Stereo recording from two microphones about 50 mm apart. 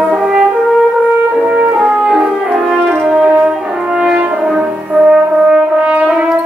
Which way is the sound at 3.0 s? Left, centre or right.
Centre.